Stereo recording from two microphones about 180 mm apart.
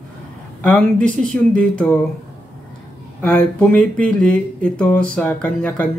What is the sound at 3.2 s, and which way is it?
Speech, 10° left (ahead or behind).